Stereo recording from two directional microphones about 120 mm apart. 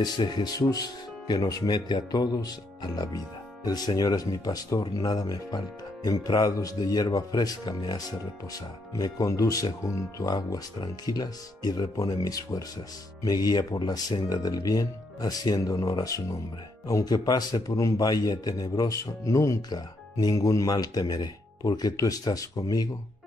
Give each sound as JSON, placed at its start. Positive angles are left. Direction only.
{"t": 0.0, "sound": "speech", "side_deg": 35}